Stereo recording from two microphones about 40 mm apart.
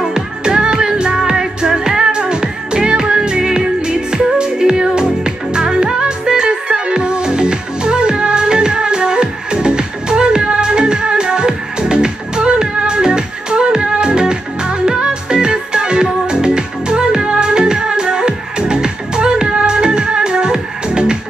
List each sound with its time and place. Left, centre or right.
0.1 s music: right